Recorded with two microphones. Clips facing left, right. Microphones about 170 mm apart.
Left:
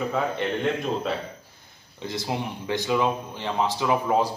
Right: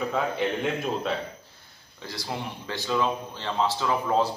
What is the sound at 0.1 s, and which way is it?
A man's voice, centre (ahead or behind).